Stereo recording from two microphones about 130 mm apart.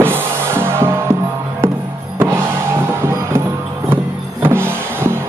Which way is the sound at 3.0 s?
20° right (ahead or behind).